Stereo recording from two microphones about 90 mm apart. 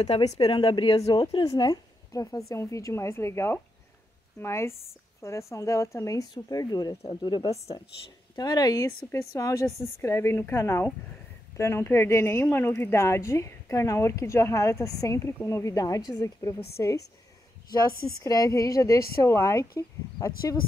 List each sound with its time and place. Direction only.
0.4 s a woman's voice: 90° left
2.1 s speech: 35° left (ahead or behind)
7.1 s speech: 60° left (ahead or behind)
7.4 s speech: 40° left (ahead or behind)
8.8 s speech: 35° left (ahead or behind)
16.5 s speech: 30° left (ahead or behind)
18.2 s speech: 40° left (ahead or behind)